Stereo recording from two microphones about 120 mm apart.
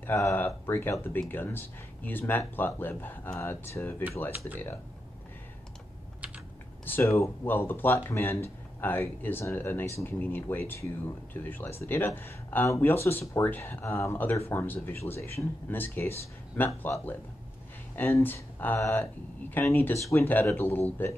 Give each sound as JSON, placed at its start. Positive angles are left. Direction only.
{"t": 0.0, "sound": "speech", "side_deg": 15}
{"t": 6.9, "sound": "speech", "side_deg": 25}